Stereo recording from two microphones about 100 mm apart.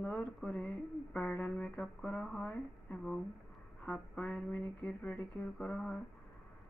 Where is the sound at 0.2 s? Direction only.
5° left (ahead or behind).